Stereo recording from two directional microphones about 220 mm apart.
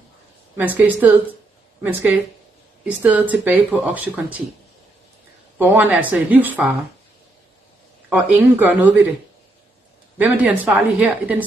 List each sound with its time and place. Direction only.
0.6 s speech: 10° right (ahead or behind)
5.6 s speech: 10° right (ahead or behind)
8.1 s speech: 10° right (ahead or behind)
10.1 s speech: 5° right (ahead or behind)